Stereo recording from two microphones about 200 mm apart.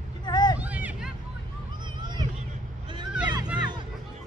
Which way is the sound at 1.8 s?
20° right (ahead or behind).